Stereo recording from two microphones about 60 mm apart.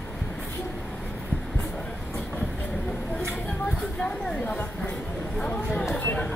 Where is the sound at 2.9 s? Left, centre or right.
Centre.